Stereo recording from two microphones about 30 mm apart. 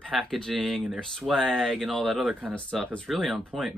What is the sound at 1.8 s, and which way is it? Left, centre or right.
Speech, centre.